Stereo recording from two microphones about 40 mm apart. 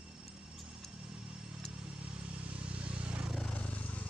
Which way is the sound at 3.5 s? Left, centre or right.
Left.